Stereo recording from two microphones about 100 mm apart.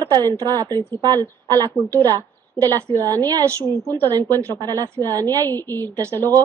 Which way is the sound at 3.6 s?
20° left (ahead or behind).